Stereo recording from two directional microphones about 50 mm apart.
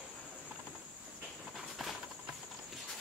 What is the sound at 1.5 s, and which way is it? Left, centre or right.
Train, centre.